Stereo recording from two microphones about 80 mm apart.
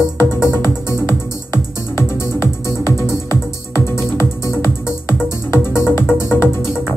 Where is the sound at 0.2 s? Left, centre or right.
Left.